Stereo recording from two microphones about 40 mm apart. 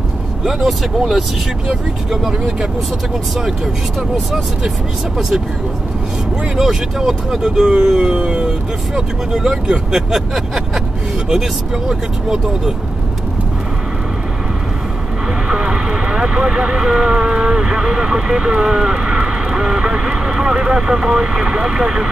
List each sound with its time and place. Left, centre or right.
0.4 s speech: centre
6.5 s speech: centre
11.9 s speech: centre
15.4 s speech: centre